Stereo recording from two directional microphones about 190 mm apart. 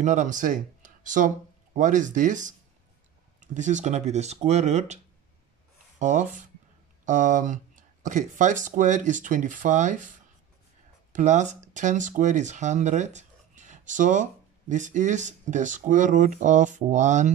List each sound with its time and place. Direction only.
0.0 s speech: 40° right (ahead or behind)
11.1 s speech: 40° right (ahead or behind)